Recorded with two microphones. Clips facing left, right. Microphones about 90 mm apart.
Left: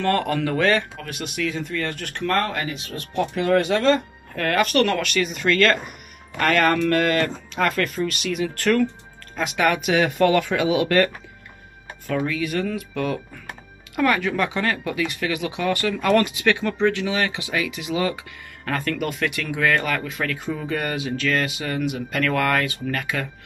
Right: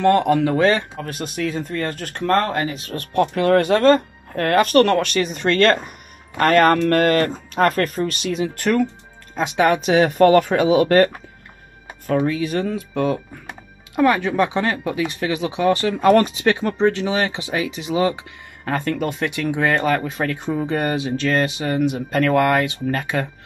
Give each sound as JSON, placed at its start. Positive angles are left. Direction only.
{"t": 0.0, "sound": "speech", "side_deg": -20}
{"t": 1.0, "sound": "speech", "side_deg": -40}
{"t": 8.5, "sound": "speech", "side_deg": -20}
{"t": 12.2, "sound": "speech", "side_deg": -30}